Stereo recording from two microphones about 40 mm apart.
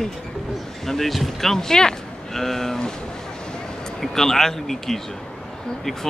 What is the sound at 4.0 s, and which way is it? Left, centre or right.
Speech, centre.